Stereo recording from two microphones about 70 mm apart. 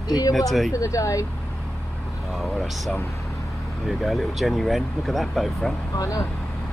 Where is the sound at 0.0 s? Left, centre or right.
Left.